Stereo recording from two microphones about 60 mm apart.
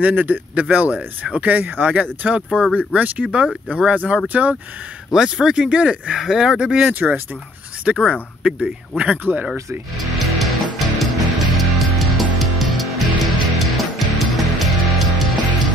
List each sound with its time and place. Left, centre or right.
0.0 s speech: right
5.1 s speech: centre
6.9 s speech: right
8.0 s speech: centre
9.2 s speech: right
10.1 s music: centre